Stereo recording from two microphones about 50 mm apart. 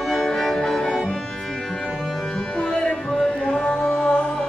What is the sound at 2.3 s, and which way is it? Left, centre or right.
Music, centre.